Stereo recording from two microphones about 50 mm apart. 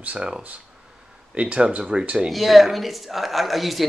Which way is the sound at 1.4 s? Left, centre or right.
Right.